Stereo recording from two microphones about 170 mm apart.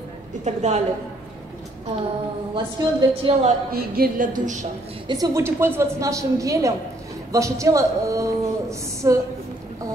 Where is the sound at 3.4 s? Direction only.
60° right (ahead or behind).